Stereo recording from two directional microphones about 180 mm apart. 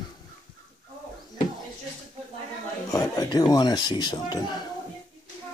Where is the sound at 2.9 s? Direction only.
20° left (ahead or behind).